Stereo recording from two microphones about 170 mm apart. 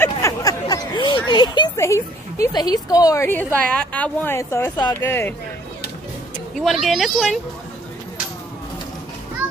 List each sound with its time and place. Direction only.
0.0 s a sound: 20° left (ahead or behind)
1.8 s a woman's voice: 15° left (ahead or behind)
6.6 s speech: centre (ahead or behind)